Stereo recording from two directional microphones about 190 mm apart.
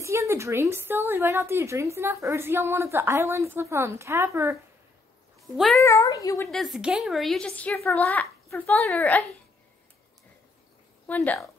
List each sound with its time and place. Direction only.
0.0 s a woman's voice: 15° right (ahead or behind)
5.6 s a woman's voice: centre (ahead or behind)
5.9 s a child's voice: 15° left (ahead or behind)
6.5 s a woman's voice: centre (ahead or behind)
11.1 s a child's voice: 10° left (ahead or behind)